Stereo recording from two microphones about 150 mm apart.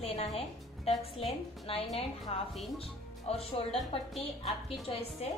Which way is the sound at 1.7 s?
40° left (ahead or behind).